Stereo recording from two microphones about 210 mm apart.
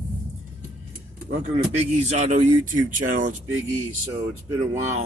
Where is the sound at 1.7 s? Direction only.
30° right (ahead or behind).